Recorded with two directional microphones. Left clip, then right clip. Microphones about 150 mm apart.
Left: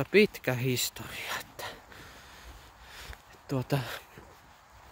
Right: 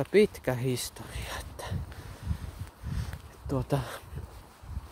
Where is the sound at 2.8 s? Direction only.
15° left (ahead or behind).